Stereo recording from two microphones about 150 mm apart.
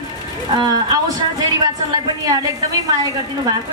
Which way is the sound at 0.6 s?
25° right (ahead or behind).